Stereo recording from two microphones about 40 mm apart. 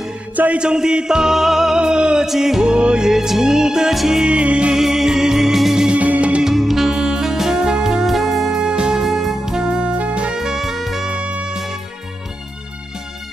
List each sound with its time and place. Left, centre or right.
0.6 s music: centre
1.8 s music: right
2.2 s music: centre
2.6 s music: right
3.1 s music: centre
3.9 s music: centre
4.2 s music: right
4.7 s music: centre
5.9 s music: right
6.4 s music: centre
6.9 s music: centre
10.3 s music: centre
11.1 s music: right